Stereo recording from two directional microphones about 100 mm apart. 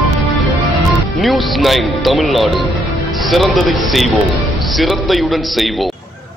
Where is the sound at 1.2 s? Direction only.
Centre (ahead or behind).